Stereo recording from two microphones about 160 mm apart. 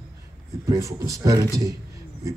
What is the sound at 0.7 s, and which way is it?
A man's voice, 20° right (ahead or behind).